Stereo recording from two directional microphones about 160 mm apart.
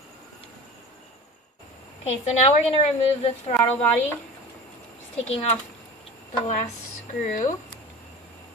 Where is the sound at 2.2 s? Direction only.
45° left (ahead or behind).